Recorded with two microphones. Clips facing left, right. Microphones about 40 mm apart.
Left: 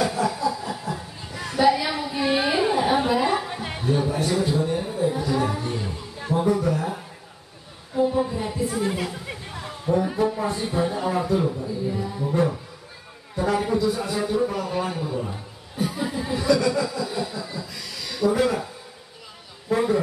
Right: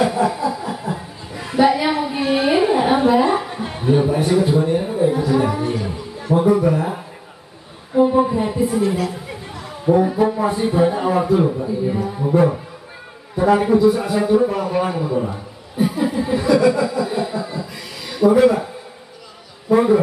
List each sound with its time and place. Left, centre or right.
0.0 s chuckle: right
2.3 s a sound: centre
3.8 s a man's voice: right
9.1 s chatter: centre
10.0 s a man's voice: centre
19.7 s a man's voice: right